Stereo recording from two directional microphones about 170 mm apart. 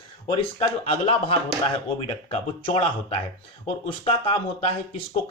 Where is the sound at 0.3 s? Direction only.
30° left (ahead or behind).